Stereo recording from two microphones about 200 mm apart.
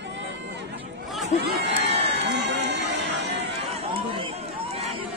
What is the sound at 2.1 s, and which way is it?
Run, 60° right (ahead or behind).